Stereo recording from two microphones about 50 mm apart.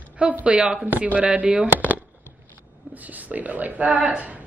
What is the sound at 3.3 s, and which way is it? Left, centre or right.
Speech, right.